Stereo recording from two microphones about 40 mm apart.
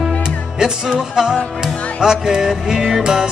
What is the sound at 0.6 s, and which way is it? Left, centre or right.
Speech, centre.